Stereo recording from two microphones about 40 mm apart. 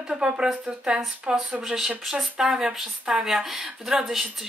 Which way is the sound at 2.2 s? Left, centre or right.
Centre.